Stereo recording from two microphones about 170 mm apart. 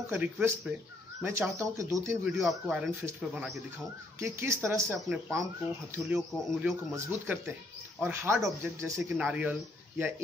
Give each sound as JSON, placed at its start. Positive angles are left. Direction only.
{"t": 0.1, "sound": "speech", "side_deg": -10}
{"t": 2.0, "sound": "speech", "side_deg": -5}
{"t": 4.2, "sound": "speech", "side_deg": -15}
{"t": 5.1, "sound": "speech", "side_deg": 0}